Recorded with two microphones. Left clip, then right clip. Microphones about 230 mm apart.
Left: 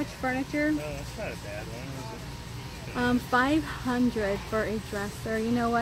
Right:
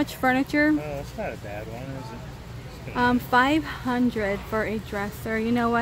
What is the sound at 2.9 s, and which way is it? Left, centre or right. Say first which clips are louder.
Speech: right 5 dB; centre.